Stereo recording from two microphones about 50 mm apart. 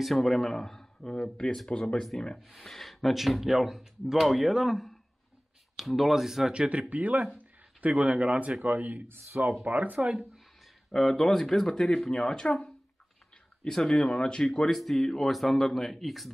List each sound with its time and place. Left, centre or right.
0.0 s speech: centre
2.3 s speech: centre
6.5 s speech: centre
6.9 s speech: right
9.0 s speech: right
9.5 s speech: right
10.9 s speech: centre
13.7 s speech: centre